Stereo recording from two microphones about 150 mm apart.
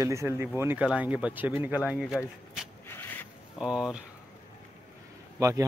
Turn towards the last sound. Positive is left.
turn(degrees=-20)  # may be behind; listen again after turning